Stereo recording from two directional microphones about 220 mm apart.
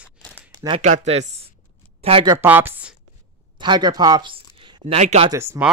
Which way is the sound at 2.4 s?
10° right (ahead or behind).